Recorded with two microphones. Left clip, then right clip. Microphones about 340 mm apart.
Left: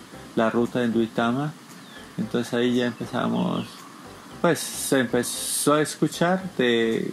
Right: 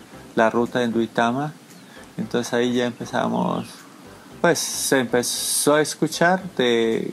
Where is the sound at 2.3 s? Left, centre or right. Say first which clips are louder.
Right 2 dB; right.